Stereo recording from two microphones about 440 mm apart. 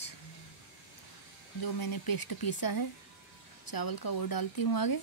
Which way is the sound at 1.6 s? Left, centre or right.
Left.